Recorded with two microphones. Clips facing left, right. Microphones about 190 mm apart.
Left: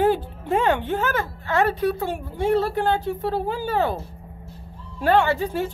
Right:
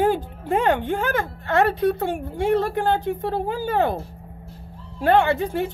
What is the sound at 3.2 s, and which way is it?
Speech, 15° right (ahead or behind).